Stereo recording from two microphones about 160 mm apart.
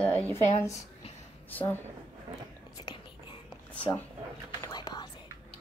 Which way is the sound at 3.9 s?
15° left (ahead or behind).